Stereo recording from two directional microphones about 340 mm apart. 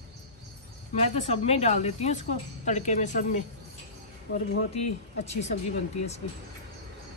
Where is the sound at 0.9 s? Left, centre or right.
Centre.